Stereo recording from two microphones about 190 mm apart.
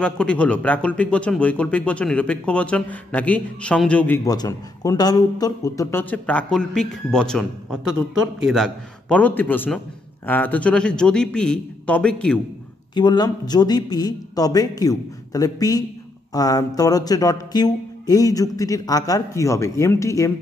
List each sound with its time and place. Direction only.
0.0 s a man's voice: 5° left (ahead or behind)
12.9 s music: 20° left (ahead or behind)